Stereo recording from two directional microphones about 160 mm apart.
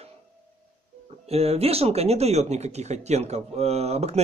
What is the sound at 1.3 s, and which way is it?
Speech, 40° right (ahead or behind).